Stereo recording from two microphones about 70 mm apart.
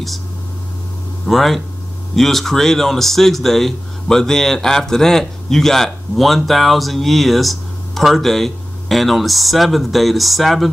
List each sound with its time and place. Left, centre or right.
1.2 s speech: centre